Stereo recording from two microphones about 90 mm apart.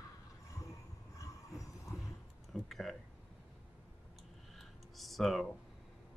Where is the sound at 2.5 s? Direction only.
Centre (ahead or behind).